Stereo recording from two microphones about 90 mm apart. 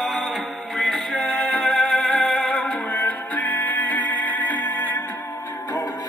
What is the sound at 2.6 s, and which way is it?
Music, 15° left (ahead or behind).